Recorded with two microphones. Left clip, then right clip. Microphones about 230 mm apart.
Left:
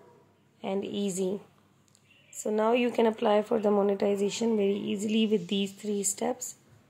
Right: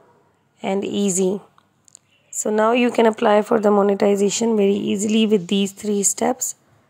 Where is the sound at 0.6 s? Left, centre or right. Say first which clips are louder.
Right 10 dB; right.